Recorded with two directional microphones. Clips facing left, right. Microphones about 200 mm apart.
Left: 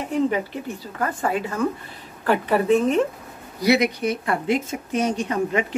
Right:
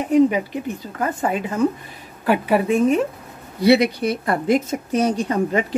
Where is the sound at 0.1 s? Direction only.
15° right (ahead or behind).